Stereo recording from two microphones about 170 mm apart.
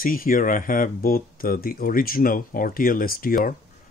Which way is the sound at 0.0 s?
55° left (ahead or behind).